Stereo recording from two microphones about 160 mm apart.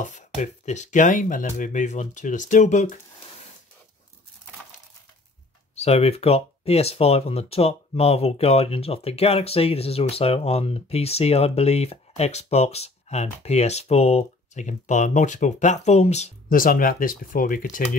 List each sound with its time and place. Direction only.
0.0 s speech: 50° left (ahead or behind)
5.8 s speech: 40° left (ahead or behind)
16.5 s speech: 60° left (ahead or behind)